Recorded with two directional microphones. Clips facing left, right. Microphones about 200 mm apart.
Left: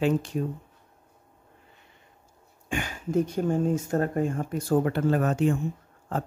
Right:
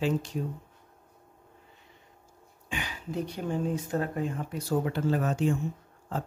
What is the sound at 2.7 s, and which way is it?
Speech, 50° left (ahead or behind).